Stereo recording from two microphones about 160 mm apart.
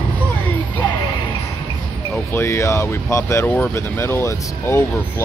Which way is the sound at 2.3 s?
15° left (ahead or behind).